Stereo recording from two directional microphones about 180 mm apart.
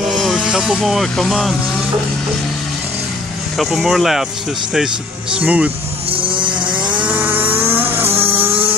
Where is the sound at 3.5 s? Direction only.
Centre (ahead or behind).